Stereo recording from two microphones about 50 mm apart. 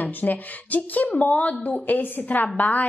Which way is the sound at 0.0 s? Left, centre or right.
Left.